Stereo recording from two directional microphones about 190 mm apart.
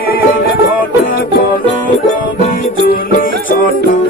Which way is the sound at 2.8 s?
50° left (ahead or behind).